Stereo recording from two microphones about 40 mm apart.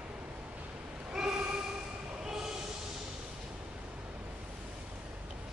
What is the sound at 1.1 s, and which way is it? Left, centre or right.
Train, centre.